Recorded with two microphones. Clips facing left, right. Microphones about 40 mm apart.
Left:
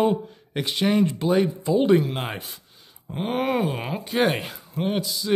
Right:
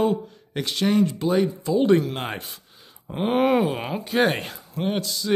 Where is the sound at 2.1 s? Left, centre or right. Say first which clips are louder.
Even; centre.